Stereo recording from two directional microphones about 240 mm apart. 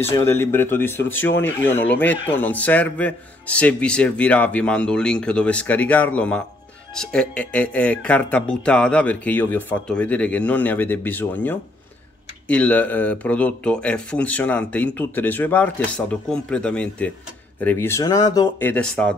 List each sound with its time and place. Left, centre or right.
0.0 s speech: centre
1.1 s speech: left
1.4 s speech: centre